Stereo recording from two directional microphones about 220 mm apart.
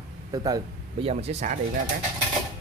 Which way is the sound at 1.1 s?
30° right (ahead or behind).